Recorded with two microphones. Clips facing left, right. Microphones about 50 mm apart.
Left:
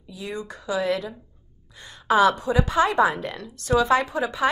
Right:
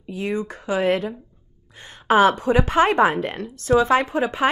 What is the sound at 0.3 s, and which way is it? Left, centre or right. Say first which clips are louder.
A woman's voice: right 3 dB; right.